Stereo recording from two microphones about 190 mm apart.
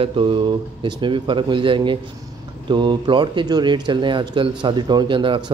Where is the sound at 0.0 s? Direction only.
30° right (ahead or behind).